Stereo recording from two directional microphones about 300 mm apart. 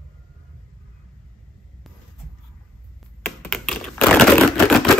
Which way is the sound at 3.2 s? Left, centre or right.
Centre.